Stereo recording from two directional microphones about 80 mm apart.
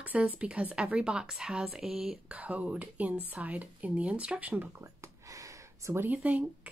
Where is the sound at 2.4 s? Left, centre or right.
Centre.